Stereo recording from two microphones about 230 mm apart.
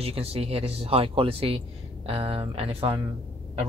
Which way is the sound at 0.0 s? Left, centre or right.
Right.